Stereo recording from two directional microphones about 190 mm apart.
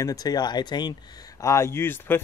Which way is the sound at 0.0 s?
20° left (ahead or behind).